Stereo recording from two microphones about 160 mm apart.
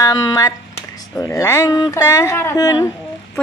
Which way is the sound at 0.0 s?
25° left (ahead or behind).